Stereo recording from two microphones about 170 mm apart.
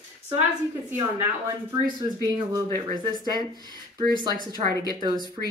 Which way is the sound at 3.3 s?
25° right (ahead or behind).